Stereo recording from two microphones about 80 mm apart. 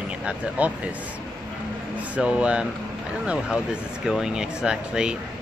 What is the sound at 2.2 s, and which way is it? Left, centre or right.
Speech, centre.